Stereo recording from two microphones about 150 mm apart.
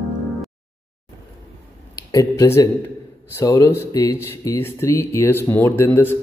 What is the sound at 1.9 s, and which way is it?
Speech, 20° left (ahead or behind).